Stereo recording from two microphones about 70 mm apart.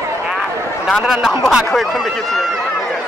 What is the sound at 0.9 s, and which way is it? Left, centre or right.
Speech, centre.